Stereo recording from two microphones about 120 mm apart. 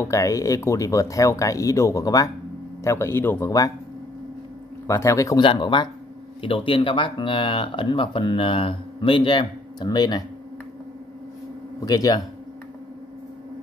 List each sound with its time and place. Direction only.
0.0 s speech: 25° left (ahead or behind)
4.8 s speech: 25° left (ahead or behind)
5.4 s speech: 45° left (ahead or behind)
11.8 s speech: 30° left (ahead or behind)